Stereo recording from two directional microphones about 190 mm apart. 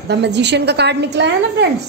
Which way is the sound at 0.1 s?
65° right (ahead or behind).